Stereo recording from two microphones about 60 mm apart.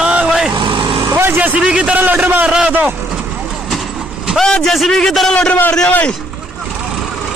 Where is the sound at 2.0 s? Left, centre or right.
Right.